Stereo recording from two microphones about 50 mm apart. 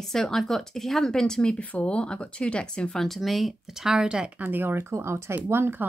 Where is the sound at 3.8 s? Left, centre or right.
Centre.